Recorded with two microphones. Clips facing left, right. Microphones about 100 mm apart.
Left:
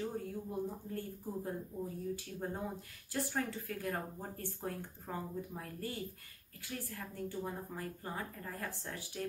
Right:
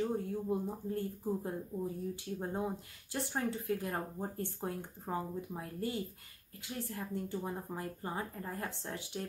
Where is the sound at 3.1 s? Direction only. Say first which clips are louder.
Right 1 dB; 25° right (ahead or behind).